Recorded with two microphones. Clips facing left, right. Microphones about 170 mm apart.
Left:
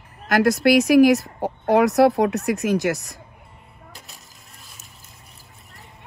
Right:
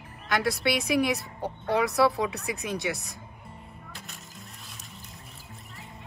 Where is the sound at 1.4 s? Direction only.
90° left.